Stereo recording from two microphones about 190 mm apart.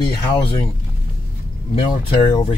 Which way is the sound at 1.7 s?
30° left (ahead or behind).